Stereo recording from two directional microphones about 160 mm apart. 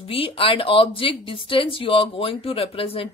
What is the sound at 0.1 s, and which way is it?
Speech, 35° left (ahead or behind).